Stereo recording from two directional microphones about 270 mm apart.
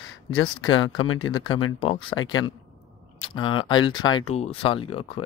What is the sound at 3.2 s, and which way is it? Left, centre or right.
Speech, centre.